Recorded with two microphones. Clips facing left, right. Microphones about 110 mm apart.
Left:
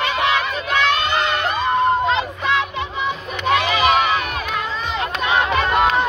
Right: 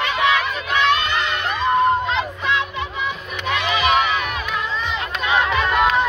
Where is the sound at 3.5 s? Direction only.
40° left (ahead or behind).